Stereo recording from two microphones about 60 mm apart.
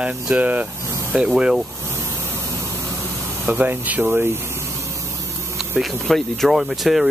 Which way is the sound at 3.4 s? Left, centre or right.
Right.